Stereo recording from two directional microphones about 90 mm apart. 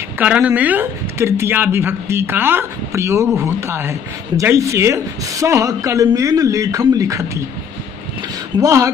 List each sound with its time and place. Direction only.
0.2 s speech: 15° right (ahead or behind)
1.1 s a woman's voice: 30° right (ahead or behind)
8.5 s a woman's voice: 35° right (ahead or behind)